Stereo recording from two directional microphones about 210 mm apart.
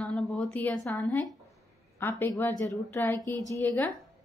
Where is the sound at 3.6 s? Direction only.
10° left (ahead or behind).